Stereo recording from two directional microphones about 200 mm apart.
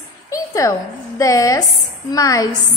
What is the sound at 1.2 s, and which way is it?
Child singing, 15° left (ahead or behind).